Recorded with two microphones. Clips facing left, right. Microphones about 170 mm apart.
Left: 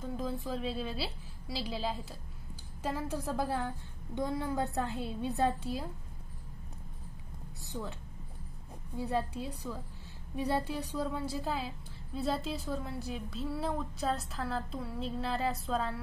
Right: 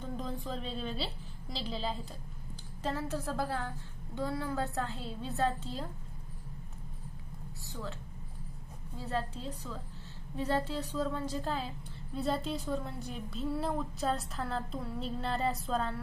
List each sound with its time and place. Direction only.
0.2 s a woman's voice: 5° left (ahead or behind)
7.6 s a woman's voice: 15° left (ahead or behind)
8.9 s a woman's voice: 15° left (ahead or behind)